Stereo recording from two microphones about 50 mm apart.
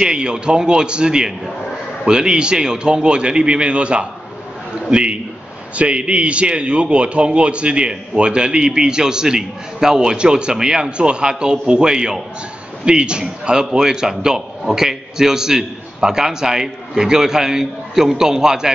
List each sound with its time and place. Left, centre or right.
0.0 s a man's voice: centre